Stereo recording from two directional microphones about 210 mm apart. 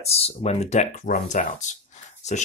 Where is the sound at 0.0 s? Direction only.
30° left (ahead or behind).